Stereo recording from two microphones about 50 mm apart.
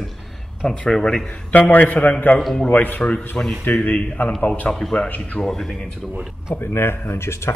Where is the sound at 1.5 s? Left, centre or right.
Left.